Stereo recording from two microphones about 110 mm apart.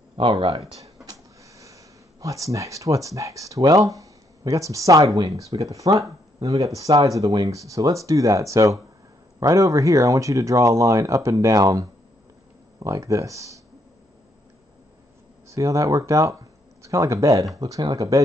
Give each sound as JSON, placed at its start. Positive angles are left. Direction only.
{"t": 0.1, "sound": "speech", "side_deg": -55}
{"t": 1.6, "sound": "speech", "side_deg": -30}
{"t": 15.5, "sound": "speech", "side_deg": -30}